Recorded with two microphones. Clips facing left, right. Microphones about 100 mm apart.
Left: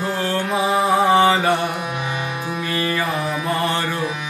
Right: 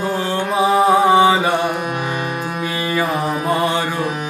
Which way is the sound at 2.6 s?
15° right (ahead or behind).